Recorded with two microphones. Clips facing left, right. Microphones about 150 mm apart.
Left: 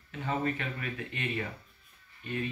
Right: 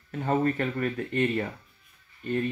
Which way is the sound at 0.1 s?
45° right (ahead or behind).